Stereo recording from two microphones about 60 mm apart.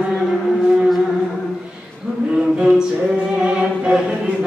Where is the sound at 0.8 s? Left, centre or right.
Centre.